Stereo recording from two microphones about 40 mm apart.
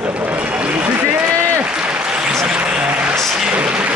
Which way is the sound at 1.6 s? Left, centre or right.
Right.